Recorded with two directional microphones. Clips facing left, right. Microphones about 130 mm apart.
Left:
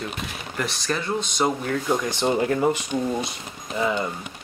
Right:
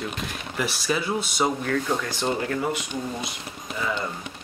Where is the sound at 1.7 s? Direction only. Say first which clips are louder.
Left 1 dB; 10° left (ahead or behind).